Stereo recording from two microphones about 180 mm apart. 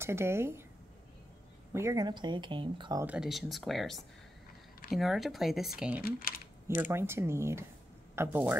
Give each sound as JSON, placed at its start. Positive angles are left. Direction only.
{"t": 0.0, "sound": "speech", "side_deg": -15}
{"t": 1.7, "sound": "speech", "side_deg": -15}
{"t": 3.1, "sound": "speech", "side_deg": 0}
{"t": 4.9, "sound": "speech", "side_deg": 0}
{"t": 6.0, "sound": "speech", "side_deg": 55}
{"t": 6.7, "sound": "speech", "side_deg": -10}